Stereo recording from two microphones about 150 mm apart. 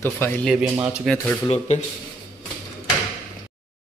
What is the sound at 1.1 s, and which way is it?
Speech, centre (ahead or behind).